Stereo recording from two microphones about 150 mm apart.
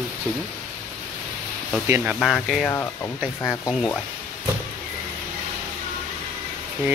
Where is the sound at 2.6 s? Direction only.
15° left (ahead or behind).